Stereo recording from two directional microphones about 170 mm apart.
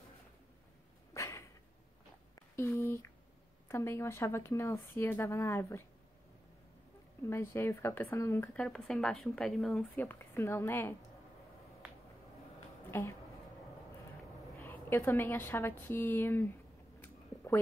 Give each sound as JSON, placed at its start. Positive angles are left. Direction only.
{"t": 1.1, "sound": "a sound", "side_deg": 20}
{"t": 3.6, "sound": "a woman's voice", "side_deg": 15}
{"t": 7.2, "sound": "a woman's voice", "side_deg": 15}
{"t": 12.9, "sound": "a woman's voice", "side_deg": 15}
{"t": 14.6, "sound": "a woman's voice", "side_deg": 10}